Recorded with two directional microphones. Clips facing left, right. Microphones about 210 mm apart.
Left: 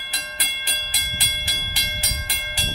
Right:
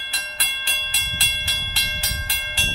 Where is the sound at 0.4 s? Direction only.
15° left (ahead or behind).